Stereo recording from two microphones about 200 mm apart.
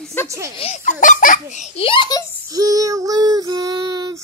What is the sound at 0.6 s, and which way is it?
A child's voice, 35° left (ahead or behind).